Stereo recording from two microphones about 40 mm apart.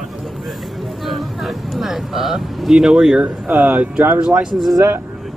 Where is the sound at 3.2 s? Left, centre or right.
Right.